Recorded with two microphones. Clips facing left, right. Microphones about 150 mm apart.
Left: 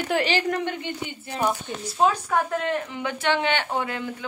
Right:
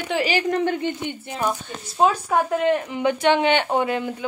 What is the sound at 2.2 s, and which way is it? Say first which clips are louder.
Speech: right 5 dB; 20° right (ahead or behind).